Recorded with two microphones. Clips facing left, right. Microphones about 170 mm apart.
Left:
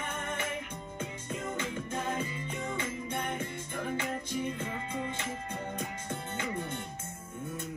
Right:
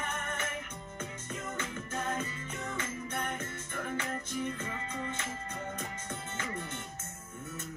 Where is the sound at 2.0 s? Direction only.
Centre (ahead or behind).